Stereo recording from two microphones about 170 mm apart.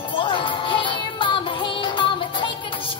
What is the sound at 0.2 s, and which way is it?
Music, 30° left (ahead or behind).